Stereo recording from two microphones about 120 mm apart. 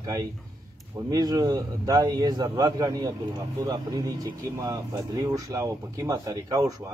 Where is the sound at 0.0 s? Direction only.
30° right (ahead or behind).